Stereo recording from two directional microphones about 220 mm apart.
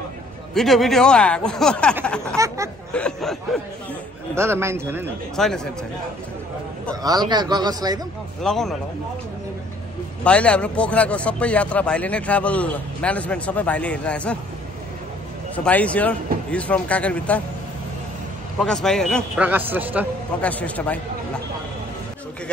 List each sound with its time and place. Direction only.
0.6 s speech: centre (ahead or behind)
2.3 s speech: 15° right (ahead or behind)
2.9 s a sound: 5° left (ahead or behind)
4.4 s speech: 10° right (ahead or behind)
5.3 s speech: centre (ahead or behind)
7.0 s speech: 15° right (ahead or behind)
8.4 s speech: centre (ahead or behind)
10.2 s speech: 5° left (ahead or behind)
15.5 s speech: 5° left (ahead or behind)
18.6 s speech: centre (ahead or behind)
20.4 s speech: 5° left (ahead or behind)